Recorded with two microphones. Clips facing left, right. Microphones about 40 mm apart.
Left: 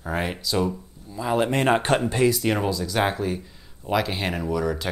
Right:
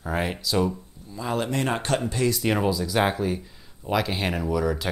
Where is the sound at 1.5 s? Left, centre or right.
Left.